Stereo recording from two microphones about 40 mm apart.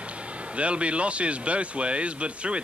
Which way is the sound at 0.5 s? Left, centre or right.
Right.